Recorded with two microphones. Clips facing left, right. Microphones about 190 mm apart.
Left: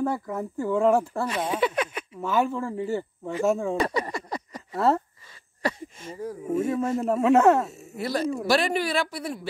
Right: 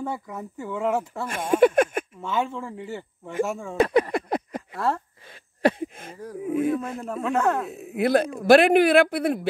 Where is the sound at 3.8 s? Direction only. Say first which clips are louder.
Right 6 dB; 60° right (ahead or behind).